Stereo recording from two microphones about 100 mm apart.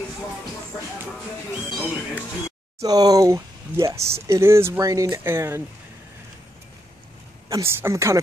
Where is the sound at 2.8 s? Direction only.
40° right (ahead or behind).